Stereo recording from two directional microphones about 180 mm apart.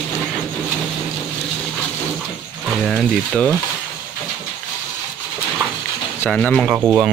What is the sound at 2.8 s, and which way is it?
Speech, centre (ahead or behind).